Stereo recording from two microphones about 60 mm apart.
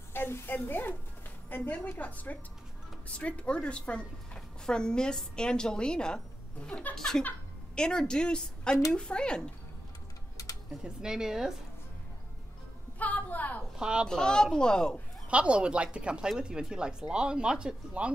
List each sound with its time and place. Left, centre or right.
0.1 s a woman's voice: left; by 9.4 s centre
10.8 s speech: centre
13.0 s a sound: left
13.7 s a child's voice: centre
14.0 s a woman's voice: centre
15.2 s speech: centre